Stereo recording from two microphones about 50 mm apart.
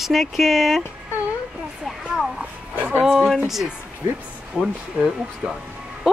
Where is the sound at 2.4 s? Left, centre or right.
Right.